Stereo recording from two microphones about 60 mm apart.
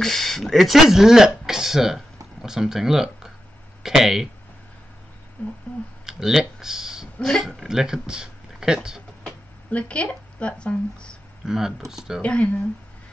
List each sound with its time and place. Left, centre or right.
0.0 s speech: centre
5.4 s speech: left
6.0 s speech: centre
7.2 s speech: centre
7.4 s speech: centre
9.7 s speech: centre
11.4 s speech: centre
12.2 s speech: centre